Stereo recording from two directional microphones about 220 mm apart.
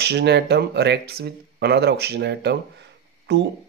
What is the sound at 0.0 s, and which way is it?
Speech, 50° right (ahead or behind).